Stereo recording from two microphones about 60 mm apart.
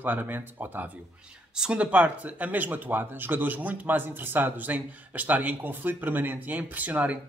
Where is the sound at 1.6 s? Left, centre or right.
Centre.